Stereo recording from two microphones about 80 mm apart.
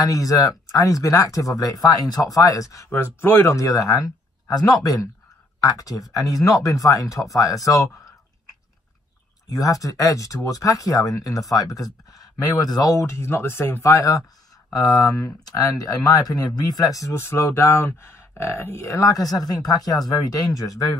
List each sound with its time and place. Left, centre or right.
0.0 s speech: left
2.9 s speech: left
5.6 s speech: left
9.5 s speech: left